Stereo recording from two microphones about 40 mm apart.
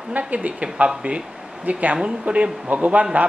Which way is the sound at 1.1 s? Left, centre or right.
Right.